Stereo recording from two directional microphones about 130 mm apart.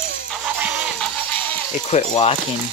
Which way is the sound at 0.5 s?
10° right (ahead or behind).